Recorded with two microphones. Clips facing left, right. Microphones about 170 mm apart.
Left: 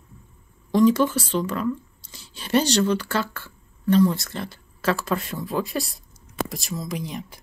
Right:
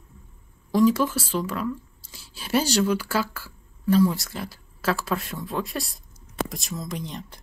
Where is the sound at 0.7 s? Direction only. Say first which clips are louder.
Left 2 dB; centre (ahead or behind).